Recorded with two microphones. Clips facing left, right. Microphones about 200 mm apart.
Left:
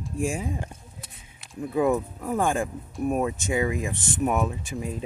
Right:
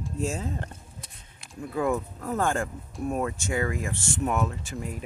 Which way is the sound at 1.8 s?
15° left (ahead or behind).